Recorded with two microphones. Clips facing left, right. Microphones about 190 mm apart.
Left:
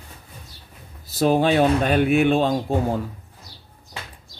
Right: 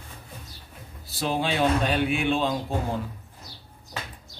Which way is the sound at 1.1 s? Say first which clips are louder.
Left 9 dB; 45° left (ahead or behind).